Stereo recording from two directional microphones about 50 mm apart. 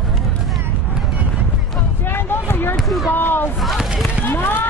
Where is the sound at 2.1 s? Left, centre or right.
Left.